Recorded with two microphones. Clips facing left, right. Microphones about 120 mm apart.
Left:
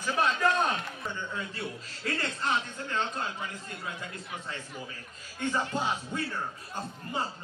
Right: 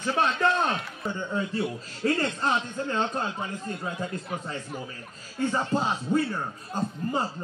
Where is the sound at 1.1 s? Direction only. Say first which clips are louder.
Right 8 dB; 35° right (ahead or behind).